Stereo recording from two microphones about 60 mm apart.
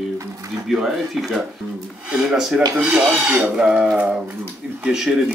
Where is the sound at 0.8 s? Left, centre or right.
Centre.